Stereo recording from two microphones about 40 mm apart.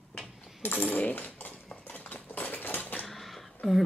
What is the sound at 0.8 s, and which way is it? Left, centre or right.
Speech, left.